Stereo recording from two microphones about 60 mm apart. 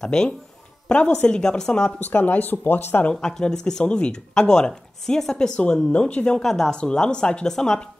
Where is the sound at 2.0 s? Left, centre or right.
Left.